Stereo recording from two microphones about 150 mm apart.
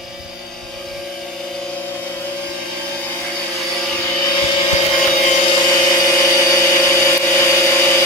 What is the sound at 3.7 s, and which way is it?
Vehicle, 5° left (ahead or behind).